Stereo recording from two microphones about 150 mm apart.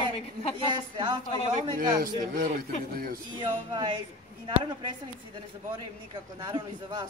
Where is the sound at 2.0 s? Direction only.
65° right (ahead or behind).